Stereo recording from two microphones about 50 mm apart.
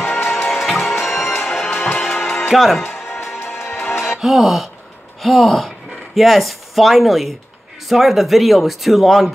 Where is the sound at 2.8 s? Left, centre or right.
Left.